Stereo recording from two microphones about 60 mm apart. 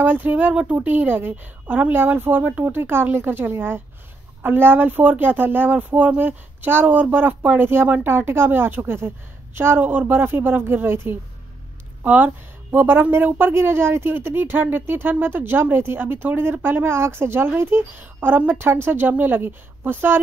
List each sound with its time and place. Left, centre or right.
0.0 s speech: right